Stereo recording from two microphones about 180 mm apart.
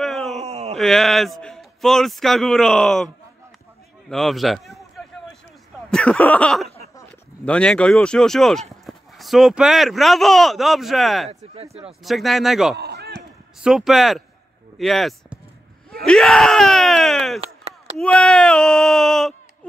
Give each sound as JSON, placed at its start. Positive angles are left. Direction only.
{"t": 0.0, "sound": "groan", "side_deg": 0}
{"t": 0.4, "sound": "groan", "side_deg": -35}
{"t": 0.7, "sound": "speech", "side_deg": 0}
{"t": 4.1, "sound": "speech", "side_deg": 0}
{"t": 11.2, "sound": "speech", "side_deg": -35}
{"t": 12.0, "sound": "speech", "side_deg": 0}
{"t": 12.7, "sound": "a sound", "side_deg": -65}
{"t": 13.6, "sound": "speech", "side_deg": -5}
{"t": 16.0, "sound": "screaming", "side_deg": 0}
{"t": 17.4, "sound": "chop", "side_deg": -35}
{"t": 18.0, "sound": "speech", "side_deg": 5}